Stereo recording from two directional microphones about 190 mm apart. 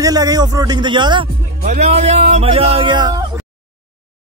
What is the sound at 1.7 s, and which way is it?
Speech, 35° right (ahead or behind).